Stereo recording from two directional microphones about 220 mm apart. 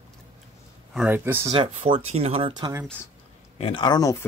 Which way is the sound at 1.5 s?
25° right (ahead or behind).